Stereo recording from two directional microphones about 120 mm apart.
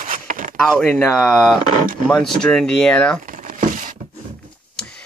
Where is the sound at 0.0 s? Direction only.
90° right.